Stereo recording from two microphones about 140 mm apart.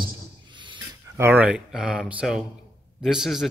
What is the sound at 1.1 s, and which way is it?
A man's voice, 15° right (ahead or behind).